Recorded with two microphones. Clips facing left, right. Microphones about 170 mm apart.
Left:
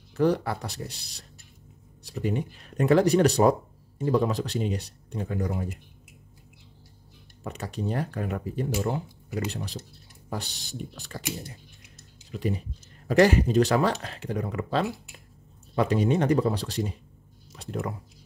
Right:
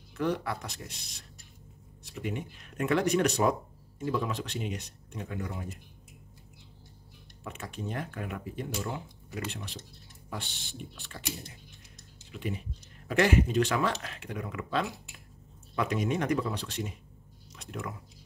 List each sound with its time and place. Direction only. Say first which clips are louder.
0.1 s speech: left 7 dB; 35° left (ahead or behind)
7.4 s speech: left 6 dB; 35° left (ahead or behind)
12.3 s speech: left 6 dB; 35° left (ahead or behind)